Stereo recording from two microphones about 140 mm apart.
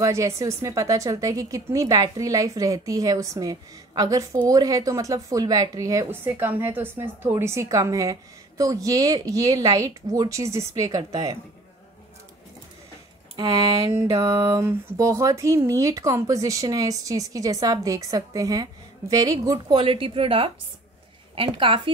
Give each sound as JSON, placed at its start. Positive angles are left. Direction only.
{"t": 0.0, "sound": "speech", "side_deg": -25}
{"t": 14.0, "sound": "a woman's voice", "side_deg": -25}